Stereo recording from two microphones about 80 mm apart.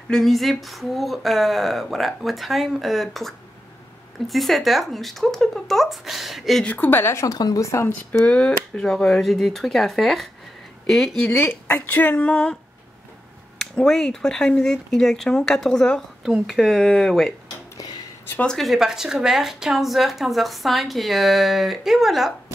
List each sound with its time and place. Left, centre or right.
0.1 s a woman's voice: centre
6.6 s speech: left
7.3 s speech: left
8.1 s a woman's voice: centre
11.3 s speech: left
13.6 s speech: centre
16.2 s a woman's voice: centre
18.4 s a woman's voice: centre